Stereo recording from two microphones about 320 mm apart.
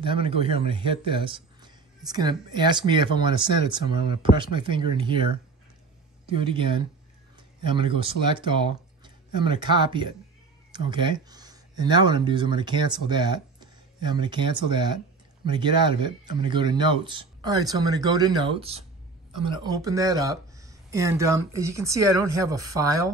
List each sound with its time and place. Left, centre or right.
0.0 s speech: centre
6.4 s speech: centre